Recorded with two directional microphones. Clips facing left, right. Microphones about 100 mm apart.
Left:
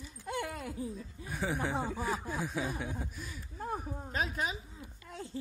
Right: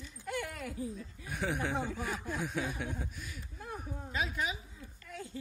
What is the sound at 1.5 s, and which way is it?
Speech, 30° left (ahead or behind).